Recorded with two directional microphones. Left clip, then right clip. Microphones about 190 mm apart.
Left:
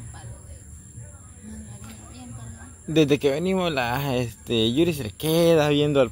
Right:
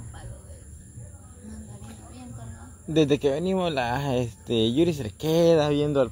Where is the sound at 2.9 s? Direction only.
5° left (ahead or behind).